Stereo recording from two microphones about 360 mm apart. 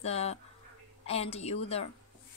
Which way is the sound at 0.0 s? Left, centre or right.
Centre.